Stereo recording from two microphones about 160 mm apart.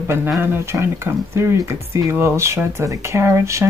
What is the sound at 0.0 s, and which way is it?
Speech, 15° right (ahead or behind).